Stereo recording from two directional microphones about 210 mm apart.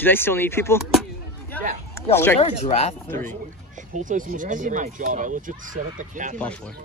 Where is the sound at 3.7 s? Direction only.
35° right (ahead or behind).